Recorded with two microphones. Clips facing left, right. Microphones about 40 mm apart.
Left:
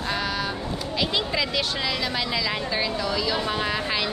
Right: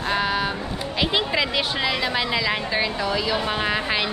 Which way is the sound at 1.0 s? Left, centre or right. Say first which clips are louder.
Right 4 dB; right.